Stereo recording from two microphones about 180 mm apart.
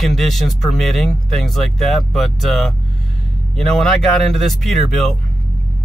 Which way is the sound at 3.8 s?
Centre (ahead or behind).